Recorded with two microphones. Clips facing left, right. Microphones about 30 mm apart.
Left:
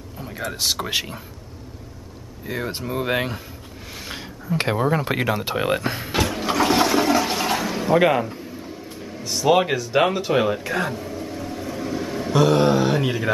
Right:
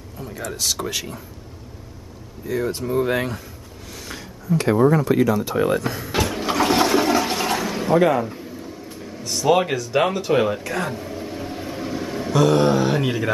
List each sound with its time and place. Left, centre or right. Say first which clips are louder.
0.2 s speech: left 1 dB; left
2.4 s speech: right 4 dB; left
3.9 s a sound: left 1 dB; left
4.7 s speech: right 6 dB; left
5.0 s speech: right 4 dB; left
6.1 s toilet flush: even; centre
8.3 s a sound: even; centre
9.0 s speech: even; centre
10.6 s air conditioning: left 1 dB; centre
12.0 s mantra: even; centre